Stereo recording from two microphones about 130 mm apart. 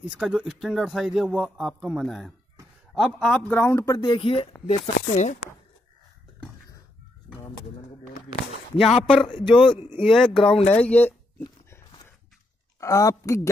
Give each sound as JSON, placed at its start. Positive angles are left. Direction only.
{"t": 0.1, "sound": "a man's voice", "side_deg": -5}
{"t": 4.1, "sound": "speech", "side_deg": 45}
{"t": 4.6, "sound": "speech", "side_deg": 60}
{"t": 7.3, "sound": "bird", "side_deg": 0}
{"t": 8.7, "sound": "a man's voice", "side_deg": 5}
{"t": 10.7, "sound": "a sound", "side_deg": 10}
{"t": 12.8, "sound": "a woman's voice", "side_deg": 25}